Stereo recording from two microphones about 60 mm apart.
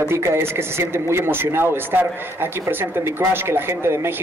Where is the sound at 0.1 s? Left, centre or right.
Right.